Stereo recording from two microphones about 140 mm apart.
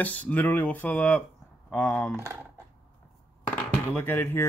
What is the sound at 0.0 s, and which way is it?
Speech, 10° left (ahead or behind).